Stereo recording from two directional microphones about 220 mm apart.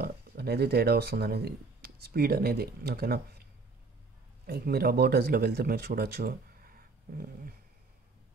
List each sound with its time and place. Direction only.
0.0 s speech: 45° right (ahead or behind)
4.5 s speech: 45° right (ahead or behind)